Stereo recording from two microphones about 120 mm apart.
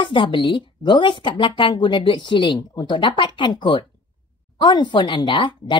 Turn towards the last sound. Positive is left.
turn(degrees=45)  # may be behind; listen again after turning